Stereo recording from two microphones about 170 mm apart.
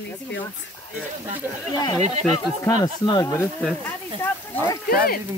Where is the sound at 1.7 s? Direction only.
25° left (ahead or behind).